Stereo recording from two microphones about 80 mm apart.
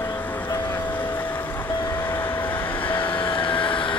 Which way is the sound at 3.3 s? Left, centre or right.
Left.